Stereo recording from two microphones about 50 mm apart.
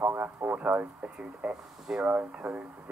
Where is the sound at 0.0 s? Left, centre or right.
Right.